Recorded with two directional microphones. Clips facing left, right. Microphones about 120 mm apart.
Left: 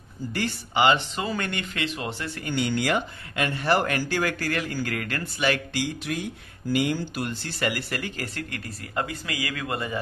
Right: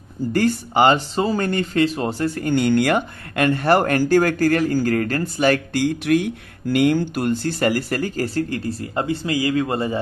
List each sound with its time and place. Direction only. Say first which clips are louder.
0.3 s speech: right 10 dB; 45° right (ahead or behind)